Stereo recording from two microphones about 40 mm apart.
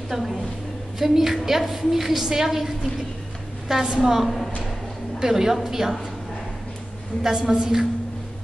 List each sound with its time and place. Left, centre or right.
0.1 s a woman's voice: centre
7.2 s a woman's voice: centre